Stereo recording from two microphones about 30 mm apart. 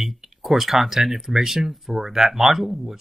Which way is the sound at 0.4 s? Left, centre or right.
Centre.